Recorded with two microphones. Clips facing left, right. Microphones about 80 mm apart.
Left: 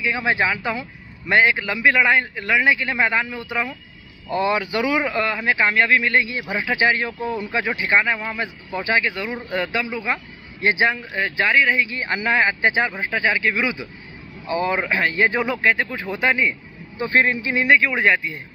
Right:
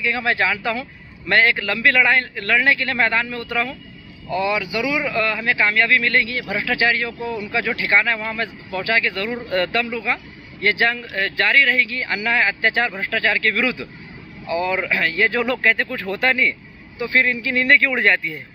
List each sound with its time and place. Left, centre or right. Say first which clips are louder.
0.0 s speech: even; centre
4.3 s speech: left 1 dB; left
5.1 s a man's voice: even; left
9.9 s speech: right 1 dB; centre
17.0 s a man's voice: left 1 dB; left
17.6 s speech: even; centre